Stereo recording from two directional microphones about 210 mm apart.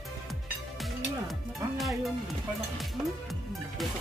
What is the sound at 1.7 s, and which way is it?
Speech, centre (ahead or behind).